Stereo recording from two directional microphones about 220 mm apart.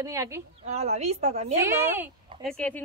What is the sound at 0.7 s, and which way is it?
Speech, 30° right (ahead or behind).